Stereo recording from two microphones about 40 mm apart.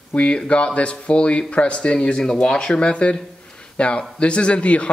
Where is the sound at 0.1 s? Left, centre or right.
Left.